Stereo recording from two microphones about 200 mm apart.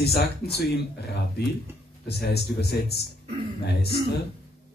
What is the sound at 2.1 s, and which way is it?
Speech, 55° left (ahead or behind).